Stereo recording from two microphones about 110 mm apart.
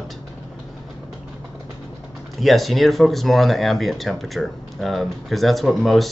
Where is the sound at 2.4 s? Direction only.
Centre (ahead or behind).